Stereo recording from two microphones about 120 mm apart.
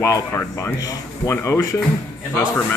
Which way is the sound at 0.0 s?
25° left (ahead or behind).